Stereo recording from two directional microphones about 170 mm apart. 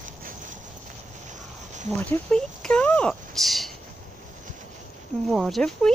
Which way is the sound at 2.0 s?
5° left (ahead or behind).